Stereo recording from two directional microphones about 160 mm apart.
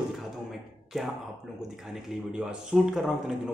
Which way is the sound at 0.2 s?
Centre (ahead or behind).